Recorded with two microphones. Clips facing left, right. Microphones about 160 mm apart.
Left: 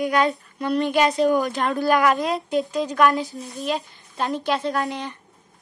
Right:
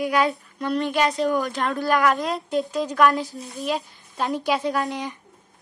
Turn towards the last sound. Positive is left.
turn(degrees=-5)  # may be behind; listen again after turning